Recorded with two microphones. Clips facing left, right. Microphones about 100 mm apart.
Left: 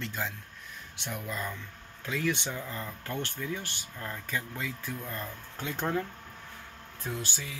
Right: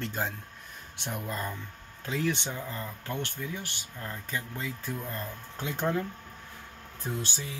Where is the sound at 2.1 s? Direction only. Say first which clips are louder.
Right 1 dB; 25° right (ahead or behind).